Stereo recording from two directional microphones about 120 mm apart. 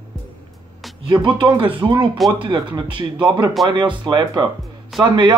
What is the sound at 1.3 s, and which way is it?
Speech, 40° right (ahead or behind).